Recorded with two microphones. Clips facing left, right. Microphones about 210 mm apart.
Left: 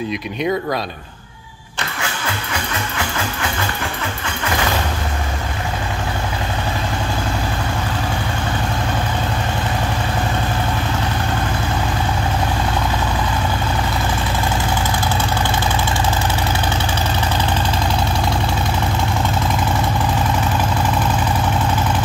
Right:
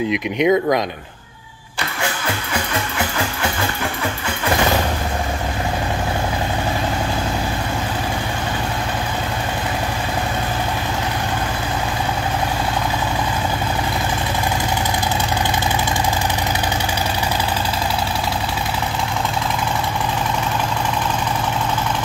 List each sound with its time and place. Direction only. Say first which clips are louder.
0.1 s speech: right 7 dB; 20° right (ahead or behind)